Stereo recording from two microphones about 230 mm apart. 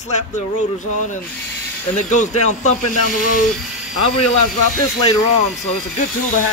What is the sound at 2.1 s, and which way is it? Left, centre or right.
Speech, left.